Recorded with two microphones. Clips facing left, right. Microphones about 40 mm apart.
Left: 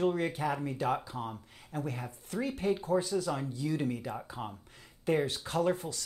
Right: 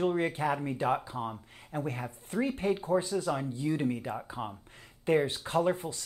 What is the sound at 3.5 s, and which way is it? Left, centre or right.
Speech, right.